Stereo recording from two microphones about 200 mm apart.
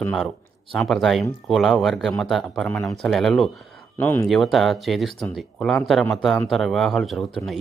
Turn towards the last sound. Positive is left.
turn(degrees=0)  # may be behind; listen again after turning